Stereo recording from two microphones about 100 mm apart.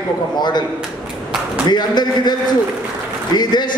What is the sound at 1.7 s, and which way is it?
A man's voice, 45° left (ahead or behind).